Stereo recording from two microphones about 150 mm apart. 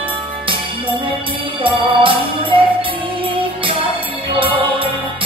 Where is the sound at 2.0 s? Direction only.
35° right (ahead or behind).